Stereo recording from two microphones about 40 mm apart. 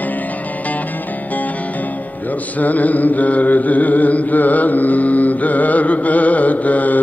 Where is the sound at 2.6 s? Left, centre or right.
Left.